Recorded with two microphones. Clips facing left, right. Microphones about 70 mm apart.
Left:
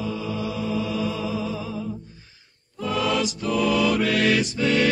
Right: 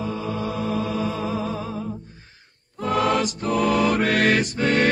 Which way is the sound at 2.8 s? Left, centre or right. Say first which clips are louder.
Right 3 dB; right.